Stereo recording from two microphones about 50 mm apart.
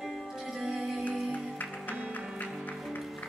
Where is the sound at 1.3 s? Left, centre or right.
Left.